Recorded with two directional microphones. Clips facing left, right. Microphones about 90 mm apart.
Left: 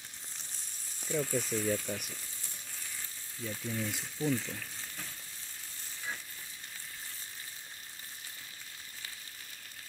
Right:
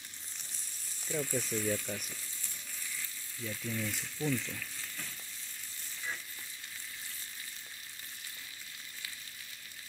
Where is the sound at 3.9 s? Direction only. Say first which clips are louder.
Left 1 dB; 15° left (ahead or behind).